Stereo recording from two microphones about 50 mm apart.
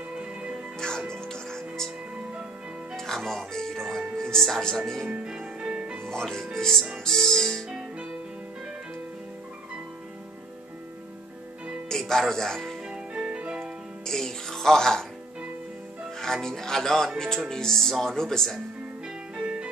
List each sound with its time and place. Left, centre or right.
0.1 s music: right
0.7 s music: centre
3.0 s speech: centre
5.1 s music: centre
6.0 s speech: centre
7.1 s music: centre
11.9 s speech: centre
12.9 s music: centre
14.0 s music: centre
16.2 s speech: centre
19.3 s music: right